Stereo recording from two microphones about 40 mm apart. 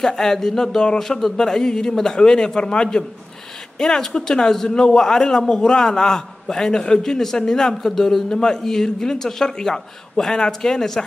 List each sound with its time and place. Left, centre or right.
0.0 s a man's voice: centre